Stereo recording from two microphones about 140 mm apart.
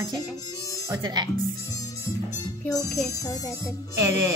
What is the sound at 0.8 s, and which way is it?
Speech, 30° right (ahead or behind).